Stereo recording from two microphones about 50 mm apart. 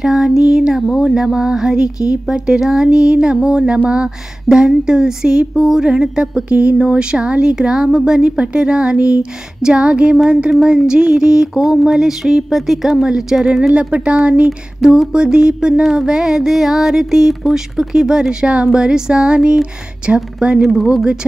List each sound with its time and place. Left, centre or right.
0.0 s music: centre
8.4 s speech: centre
10.5 s music: centre
13.7 s speech: right
15.8 s music: centre
20.3 s a woman's voice: centre
20.6 s speech: centre
20.9 s music: centre